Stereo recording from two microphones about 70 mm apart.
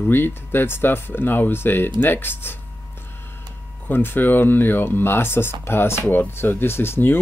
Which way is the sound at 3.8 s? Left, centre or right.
Left.